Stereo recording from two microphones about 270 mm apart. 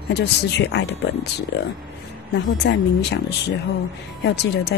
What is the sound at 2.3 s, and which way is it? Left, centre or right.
Speech, left.